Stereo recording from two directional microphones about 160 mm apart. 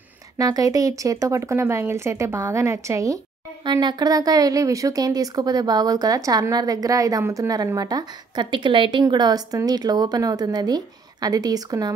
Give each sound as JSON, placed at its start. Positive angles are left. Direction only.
{"t": 0.4, "sound": "speech", "side_deg": -20}